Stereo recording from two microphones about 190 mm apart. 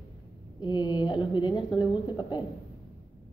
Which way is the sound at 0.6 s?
20° left (ahead or behind).